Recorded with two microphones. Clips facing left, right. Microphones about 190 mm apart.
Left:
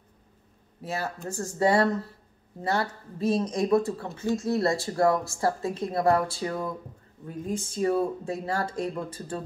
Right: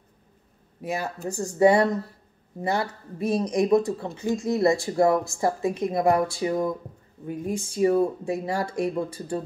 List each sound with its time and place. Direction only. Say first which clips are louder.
0.8 s speech: right 3 dB; 15° right (ahead or behind)